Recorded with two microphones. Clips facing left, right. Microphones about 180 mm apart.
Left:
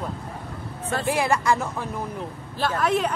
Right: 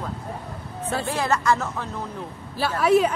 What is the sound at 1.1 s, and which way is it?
Speech, 10° left (ahead or behind).